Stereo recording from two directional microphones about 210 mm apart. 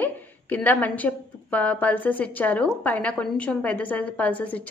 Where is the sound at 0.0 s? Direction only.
10° left (ahead or behind).